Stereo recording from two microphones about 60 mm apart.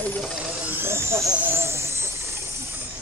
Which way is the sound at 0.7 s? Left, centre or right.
Right.